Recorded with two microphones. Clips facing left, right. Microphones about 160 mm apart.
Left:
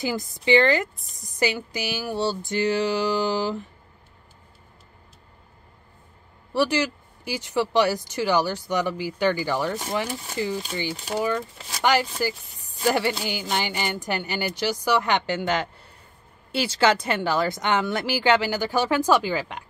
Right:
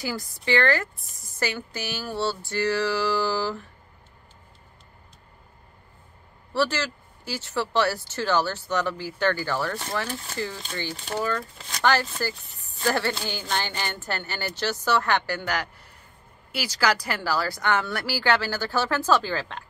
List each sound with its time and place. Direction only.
0.0 s speech: 20° left (ahead or behind)
6.5 s speech: 15° left (ahead or behind)